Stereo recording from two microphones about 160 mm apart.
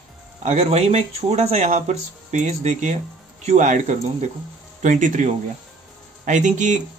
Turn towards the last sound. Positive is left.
turn(degrees=-50)  # may be behind; listen again after turning